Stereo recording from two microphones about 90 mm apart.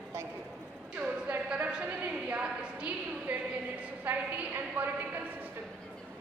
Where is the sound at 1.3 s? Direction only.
15° right (ahead or behind).